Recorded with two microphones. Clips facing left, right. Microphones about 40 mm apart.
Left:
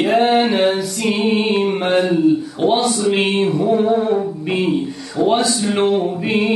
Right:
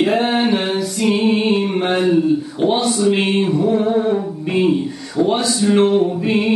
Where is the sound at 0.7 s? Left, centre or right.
Centre.